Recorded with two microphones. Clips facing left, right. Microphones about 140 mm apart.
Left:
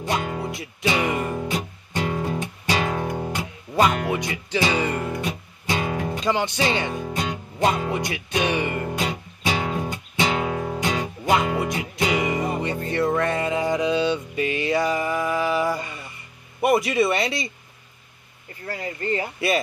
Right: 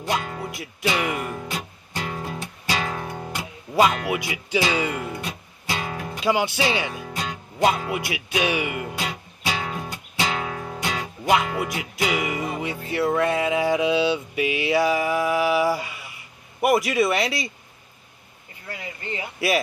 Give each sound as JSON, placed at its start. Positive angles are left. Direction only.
{"t": 0.2, "sound": "music", "side_deg": 25}
{"t": 0.5, "sound": "music", "side_deg": 0}
{"t": 1.2, "sound": "music", "side_deg": 20}
{"t": 3.7, "sound": "music", "side_deg": -10}
{"t": 5.2, "sound": "music", "side_deg": 20}
{"t": 6.1, "sound": "music", "side_deg": -10}
{"t": 7.1, "sound": "music", "side_deg": 25}
{"t": 7.5, "sound": "speech", "side_deg": -5}
{"t": 7.9, "sound": "music", "side_deg": -5}
{"t": 9.0, "sound": "music", "side_deg": 20}
{"t": 11.5, "sound": "music", "side_deg": 0}
{"t": 18.7, "sound": "speech", "side_deg": 45}